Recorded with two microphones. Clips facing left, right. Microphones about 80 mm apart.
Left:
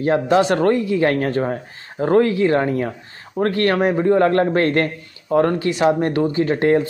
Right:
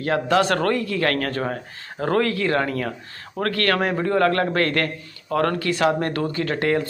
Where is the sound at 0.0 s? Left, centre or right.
Left.